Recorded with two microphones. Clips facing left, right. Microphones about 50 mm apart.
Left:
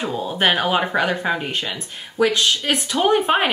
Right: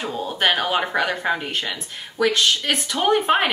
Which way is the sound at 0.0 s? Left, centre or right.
Centre.